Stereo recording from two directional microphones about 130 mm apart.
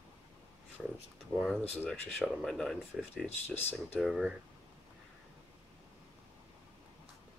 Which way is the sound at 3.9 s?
Centre (ahead or behind).